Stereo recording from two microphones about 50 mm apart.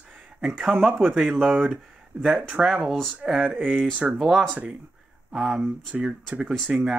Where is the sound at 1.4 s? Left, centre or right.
Right.